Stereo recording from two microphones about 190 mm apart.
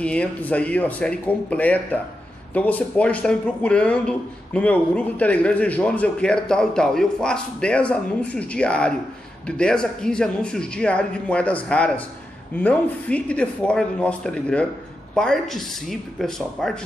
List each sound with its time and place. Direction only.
0.0 s a man's voice: 5° left (ahead or behind)